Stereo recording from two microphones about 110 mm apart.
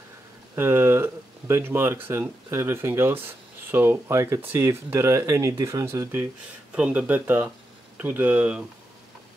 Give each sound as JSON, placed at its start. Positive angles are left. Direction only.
{"t": 0.6, "sound": "speech", "side_deg": -20}
{"t": 6.7, "sound": "speech", "side_deg": -10}